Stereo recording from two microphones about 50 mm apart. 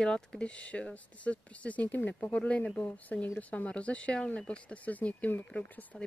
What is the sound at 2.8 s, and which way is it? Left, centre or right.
Speech, left.